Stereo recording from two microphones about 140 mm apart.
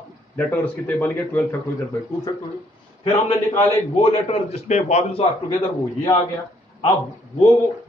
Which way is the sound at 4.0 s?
50° left (ahead or behind).